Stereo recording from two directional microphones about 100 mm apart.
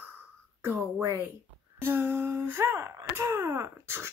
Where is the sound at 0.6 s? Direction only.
25° right (ahead or behind).